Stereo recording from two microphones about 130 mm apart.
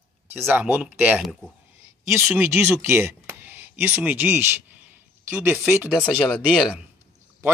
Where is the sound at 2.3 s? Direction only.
20° right (ahead or behind).